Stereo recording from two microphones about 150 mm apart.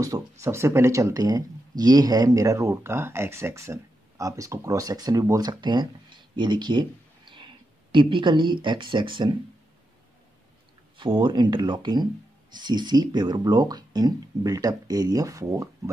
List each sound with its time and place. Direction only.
0.0 s speech: 20° right (ahead or behind)
11.0 s speech: 35° right (ahead or behind)